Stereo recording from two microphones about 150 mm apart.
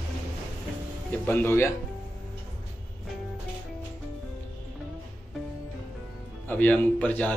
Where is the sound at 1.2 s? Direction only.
15° left (ahead or behind).